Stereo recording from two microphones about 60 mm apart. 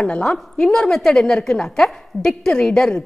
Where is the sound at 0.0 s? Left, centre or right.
Centre.